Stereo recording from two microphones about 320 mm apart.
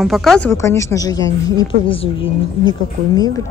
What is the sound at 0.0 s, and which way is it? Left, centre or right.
A woman's voice, centre.